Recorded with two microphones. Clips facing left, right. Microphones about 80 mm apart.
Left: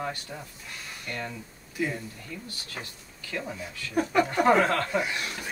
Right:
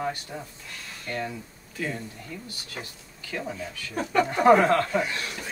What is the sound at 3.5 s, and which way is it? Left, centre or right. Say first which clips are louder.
A woman's voice: left 3 dB; centre.